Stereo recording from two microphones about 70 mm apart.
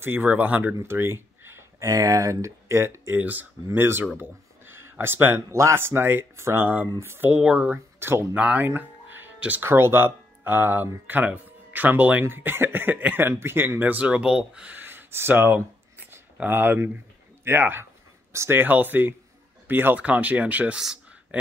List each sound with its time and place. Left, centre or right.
0.0 s speech: right
0.8 s a sound: right
1.8 s speech: right
3.2 s speech: right
7.2 s speech: centre
7.7 s speech: right
8.4 s speech: right
8.6 s music: right
9.6 s speech: right; by 14.8 s centre
14.8 s a sound: right
17.5 s speech: right
18.3 s speech: right
18.6 s speech: right